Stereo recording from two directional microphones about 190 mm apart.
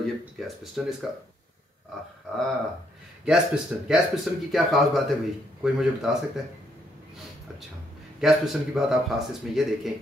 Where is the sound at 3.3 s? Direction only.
5° right (ahead or behind).